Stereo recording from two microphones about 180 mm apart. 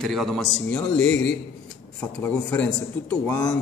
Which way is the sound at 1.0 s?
90° left.